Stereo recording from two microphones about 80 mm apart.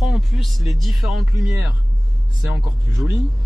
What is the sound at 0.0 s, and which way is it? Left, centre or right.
Speech, centre.